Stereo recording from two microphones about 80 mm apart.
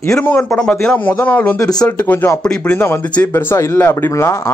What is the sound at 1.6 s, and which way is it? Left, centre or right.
Speech, left.